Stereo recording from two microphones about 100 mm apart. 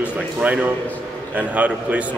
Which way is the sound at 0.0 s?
15° right (ahead or behind).